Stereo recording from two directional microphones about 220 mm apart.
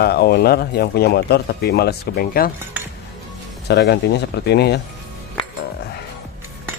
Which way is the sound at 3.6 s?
50° left (ahead or behind).